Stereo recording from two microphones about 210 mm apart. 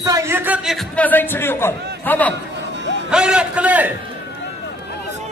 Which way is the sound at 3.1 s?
5° right (ahead or behind).